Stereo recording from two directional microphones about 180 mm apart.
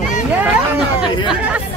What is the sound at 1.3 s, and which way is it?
Speech, 10° right (ahead or behind).